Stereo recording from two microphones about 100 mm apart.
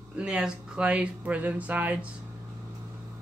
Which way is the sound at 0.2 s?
10° right (ahead or behind).